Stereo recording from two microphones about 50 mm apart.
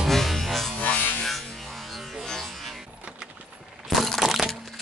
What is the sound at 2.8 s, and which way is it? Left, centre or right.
Music, centre.